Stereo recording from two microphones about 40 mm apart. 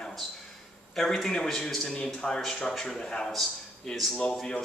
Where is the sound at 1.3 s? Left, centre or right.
Centre.